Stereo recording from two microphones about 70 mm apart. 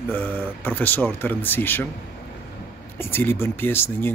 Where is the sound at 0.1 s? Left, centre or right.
Left.